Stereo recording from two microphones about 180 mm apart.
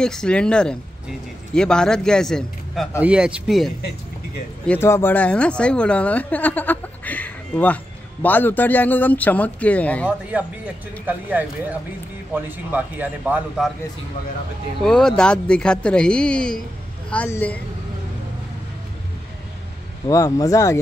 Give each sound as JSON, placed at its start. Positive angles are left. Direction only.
{"t": 0.0, "sound": "a man's voice", "side_deg": 5}
{"t": 4.6, "sound": "speech", "side_deg": 15}
{"t": 10.3, "sound": "speech", "side_deg": -5}
{"t": 14.8, "sound": "a man's voice", "side_deg": 0}
{"t": 20.1, "sound": "speech", "side_deg": 20}